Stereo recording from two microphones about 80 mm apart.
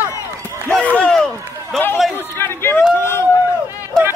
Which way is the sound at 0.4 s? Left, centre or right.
Right.